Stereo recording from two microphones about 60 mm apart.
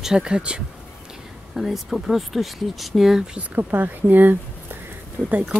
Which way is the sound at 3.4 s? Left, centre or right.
Right.